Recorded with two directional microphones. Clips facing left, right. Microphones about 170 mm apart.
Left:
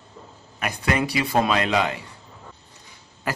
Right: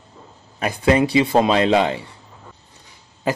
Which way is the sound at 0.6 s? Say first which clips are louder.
Right 7 dB; 30° right (ahead or behind).